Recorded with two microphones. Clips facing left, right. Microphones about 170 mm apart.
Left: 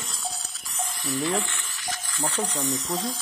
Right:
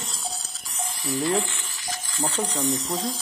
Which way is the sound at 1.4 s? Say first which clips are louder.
Right 3 dB; 30° right (ahead or behind).